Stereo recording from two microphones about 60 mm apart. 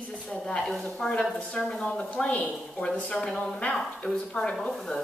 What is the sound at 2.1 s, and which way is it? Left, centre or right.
A woman's voice, left.